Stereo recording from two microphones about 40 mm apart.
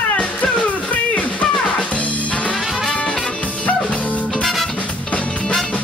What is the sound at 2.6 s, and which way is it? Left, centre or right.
Music, centre.